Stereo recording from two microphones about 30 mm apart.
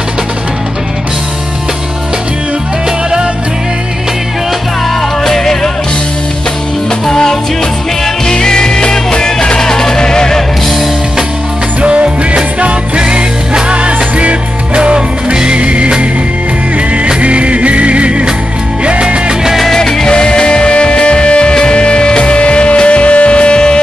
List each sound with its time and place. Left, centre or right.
5.2 s music: centre
7.1 s music: centre
11.8 s music: right
19.7 s music: centre
20.1 s music: left